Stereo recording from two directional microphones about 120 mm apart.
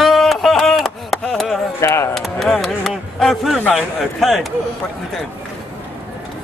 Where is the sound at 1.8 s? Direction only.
25° left (ahead or behind).